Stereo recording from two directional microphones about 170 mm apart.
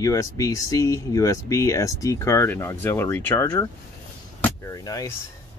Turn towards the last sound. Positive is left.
turn(degrees=20)  # may be behind; listen again after turning